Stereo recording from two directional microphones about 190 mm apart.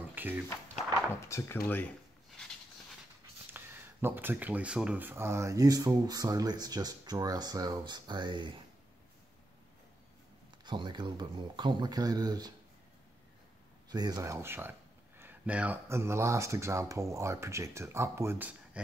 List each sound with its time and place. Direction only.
0.1 s a sound: 10° right (ahead or behind)
1.2 s speech: 15° left (ahead or behind)
3.5 s speech: 10° right (ahead or behind)
10.6 s speech: 25° right (ahead or behind)
13.8 s speech: 20° right (ahead or behind)